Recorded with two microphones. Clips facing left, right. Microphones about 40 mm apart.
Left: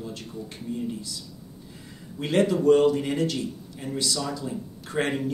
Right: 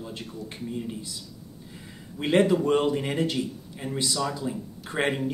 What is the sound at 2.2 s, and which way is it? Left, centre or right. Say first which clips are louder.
Speech: right 1 dB; centre.